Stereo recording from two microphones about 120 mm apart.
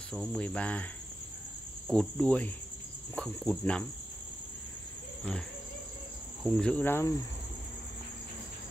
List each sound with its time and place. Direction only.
0.1 s cricket: centre (ahead or behind)
1.9 s cricket: 5° left (ahead or behind)
6.5 s cricket: 10° left (ahead or behind)